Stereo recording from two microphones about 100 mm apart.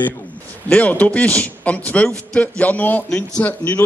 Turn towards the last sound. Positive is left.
turn(degrees=15)  # may be behind; listen again after turning